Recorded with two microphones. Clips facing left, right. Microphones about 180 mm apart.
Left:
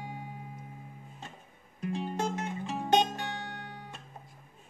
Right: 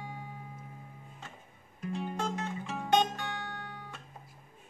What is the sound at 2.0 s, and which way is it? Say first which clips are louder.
Music: left 1 dB; 15° left (ahead or behind).